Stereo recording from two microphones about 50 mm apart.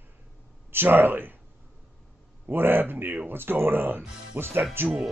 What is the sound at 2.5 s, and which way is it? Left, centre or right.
Speech, right.